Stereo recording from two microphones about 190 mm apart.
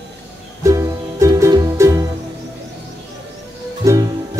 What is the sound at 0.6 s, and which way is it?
Music, 15° right (ahead or behind).